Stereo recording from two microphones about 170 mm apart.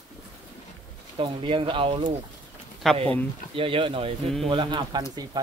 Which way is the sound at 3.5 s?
30° right (ahead or behind).